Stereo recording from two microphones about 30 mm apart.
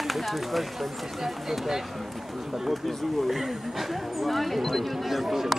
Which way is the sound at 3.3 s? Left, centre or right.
Centre.